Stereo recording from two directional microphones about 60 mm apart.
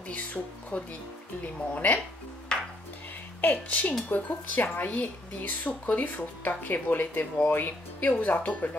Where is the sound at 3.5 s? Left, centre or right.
Left.